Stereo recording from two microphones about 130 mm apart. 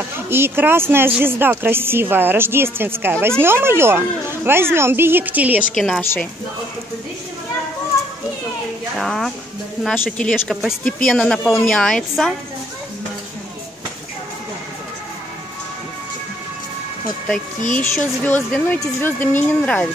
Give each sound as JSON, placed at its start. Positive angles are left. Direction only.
{"t": 0.3, "sound": "speech", "side_deg": -15}
{"t": 5.8, "sound": "speech", "side_deg": 5}
{"t": 8.9, "sound": "speech", "side_deg": 0}
{"t": 17.7, "sound": "speech", "side_deg": 10}